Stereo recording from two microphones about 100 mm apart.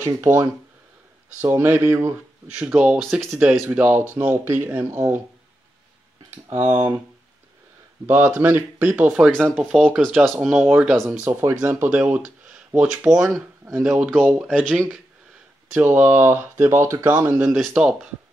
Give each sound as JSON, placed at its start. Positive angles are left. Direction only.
{"t": 0.0, "sound": "speech", "side_deg": -30}
{"t": 2.4, "sound": "speech", "side_deg": -10}
{"t": 6.5, "sound": "speech", "side_deg": -25}
{"t": 8.1, "sound": "speech", "side_deg": -20}
{"t": 10.7, "sound": "speech", "side_deg": -15}
{"t": 15.7, "sound": "speech", "side_deg": -20}